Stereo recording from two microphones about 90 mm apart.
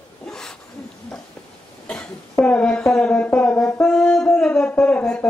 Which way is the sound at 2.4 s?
10° left (ahead or behind).